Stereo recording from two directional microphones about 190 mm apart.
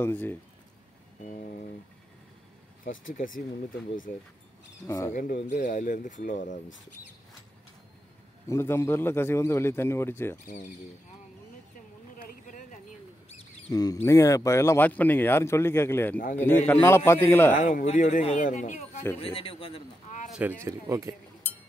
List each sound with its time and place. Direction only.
0.0 s a man's voice: 10° left (ahead or behind)
1.2 s speech: 45° left (ahead or behind)
3.2 s speech: 45° left (ahead or behind)
4.8 s a man's voice: 15° left (ahead or behind)
5.5 s speech: 45° left (ahead or behind)
8.5 s a man's voice: 15° left (ahead or behind)
10.4 s speech: 45° left (ahead or behind)
12.2 s a sound: 45° left (ahead or behind)
13.7 s a man's voice: 20° left (ahead or behind)
17.6 s speech: 40° left (ahead or behind)
20.6 s speech: 15° right (ahead or behind)